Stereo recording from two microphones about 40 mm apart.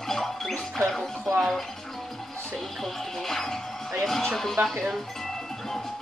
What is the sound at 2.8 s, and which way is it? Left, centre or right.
Music, centre.